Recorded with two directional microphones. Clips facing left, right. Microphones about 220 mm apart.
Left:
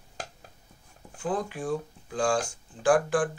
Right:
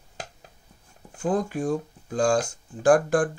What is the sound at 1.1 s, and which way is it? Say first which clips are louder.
Speech: right 5 dB; 40° right (ahead or behind).